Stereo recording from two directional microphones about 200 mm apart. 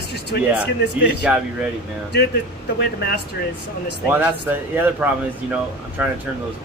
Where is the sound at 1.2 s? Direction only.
5° right (ahead or behind).